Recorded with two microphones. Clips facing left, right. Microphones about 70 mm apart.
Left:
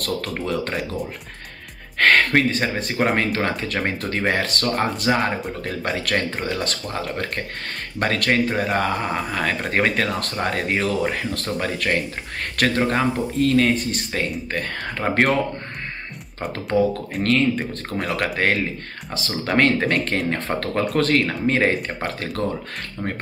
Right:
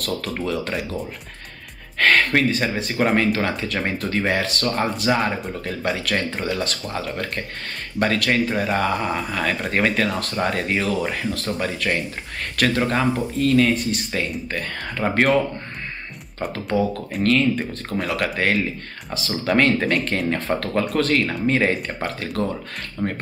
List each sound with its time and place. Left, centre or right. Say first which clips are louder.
0.0 s speech: even; left
2.0 s speech: left 1 dB; left
11.0 s speech: left 2 dB; left
12.5 s speech: even; left
16.3 s speech: left 1 dB; left
23.0 s speech: right 3 dB; centre